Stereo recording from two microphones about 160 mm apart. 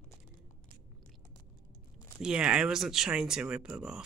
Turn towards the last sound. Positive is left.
turn(degrees=-5)  # may be behind; listen again after turning